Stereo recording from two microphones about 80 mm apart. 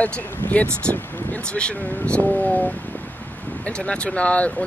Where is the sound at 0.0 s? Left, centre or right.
Centre.